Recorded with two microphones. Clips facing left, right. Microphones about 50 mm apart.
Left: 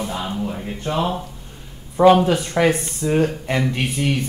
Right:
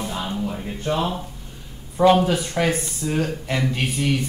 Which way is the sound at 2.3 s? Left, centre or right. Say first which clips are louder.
Left 4 dB; left.